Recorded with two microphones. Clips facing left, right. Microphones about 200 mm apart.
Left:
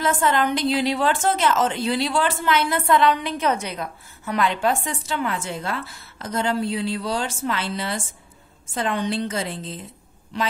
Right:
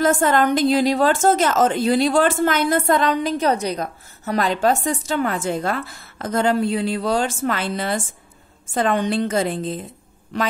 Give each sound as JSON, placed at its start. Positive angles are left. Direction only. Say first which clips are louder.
{"t": 0.0, "sound": "a woman's voice", "louder": "right 4 dB", "side_deg": -45}